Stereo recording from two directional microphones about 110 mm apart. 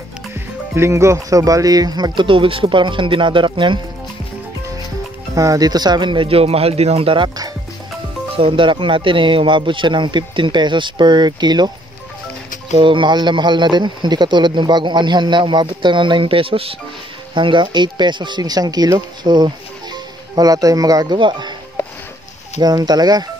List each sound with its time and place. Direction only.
0.7 s speech: 25° right (ahead or behind); by 3.8 s 45° right (ahead or behind)
5.3 s speech: 30° right (ahead or behind); by 7.2 s 60° right (ahead or behind)
8.4 s speech: 55° right (ahead or behind)
12.7 s speech: 50° right (ahead or behind)
22.6 s speech: 40° right (ahead or behind)